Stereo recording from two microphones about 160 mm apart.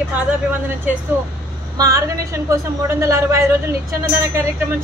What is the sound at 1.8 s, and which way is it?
A woman's voice, 20° right (ahead or behind).